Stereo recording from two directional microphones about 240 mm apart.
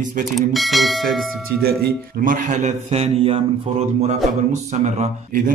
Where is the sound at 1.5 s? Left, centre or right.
Right.